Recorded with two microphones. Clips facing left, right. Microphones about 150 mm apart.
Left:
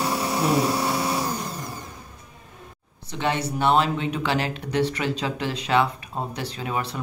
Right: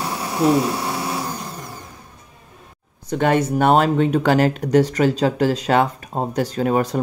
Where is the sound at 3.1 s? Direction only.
50° right (ahead or behind).